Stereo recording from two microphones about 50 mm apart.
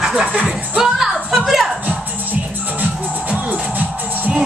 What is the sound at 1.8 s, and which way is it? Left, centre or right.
Music, right.